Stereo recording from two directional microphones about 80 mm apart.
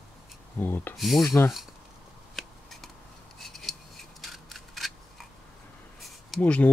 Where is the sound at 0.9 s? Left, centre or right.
Centre.